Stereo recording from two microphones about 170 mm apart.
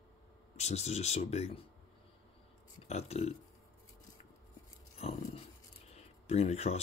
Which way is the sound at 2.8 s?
40° left (ahead or behind).